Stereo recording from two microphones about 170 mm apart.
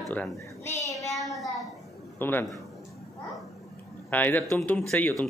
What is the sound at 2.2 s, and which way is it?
Speech, 10° left (ahead or behind).